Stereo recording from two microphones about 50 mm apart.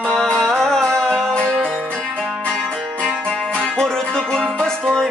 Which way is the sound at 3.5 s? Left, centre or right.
Centre.